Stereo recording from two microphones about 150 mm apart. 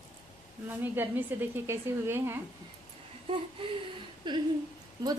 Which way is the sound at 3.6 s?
35° right (ahead or behind).